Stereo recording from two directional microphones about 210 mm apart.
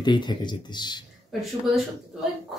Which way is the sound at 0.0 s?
20° left (ahead or behind).